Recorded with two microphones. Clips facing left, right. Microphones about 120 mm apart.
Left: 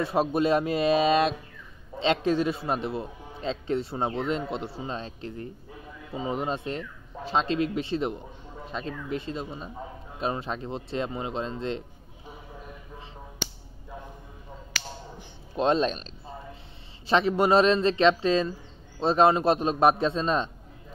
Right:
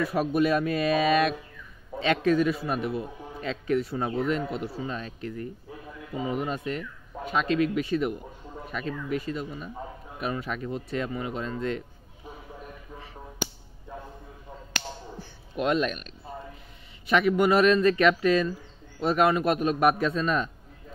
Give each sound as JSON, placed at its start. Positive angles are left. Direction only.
{"t": 0.0, "sound": "a man's voice", "side_deg": 25}
{"t": 15.5, "sound": "a man's voice", "side_deg": 30}
{"t": 17.1, "sound": "a man's voice", "side_deg": 30}